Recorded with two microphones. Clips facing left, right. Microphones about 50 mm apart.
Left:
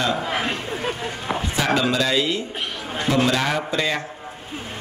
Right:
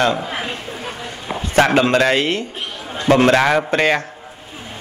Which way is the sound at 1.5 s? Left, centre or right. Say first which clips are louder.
Right 8 dB; right.